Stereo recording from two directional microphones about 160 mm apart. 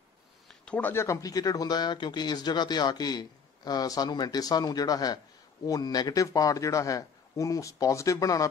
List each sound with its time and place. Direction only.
0.5 s speech: 10° left (ahead or behind)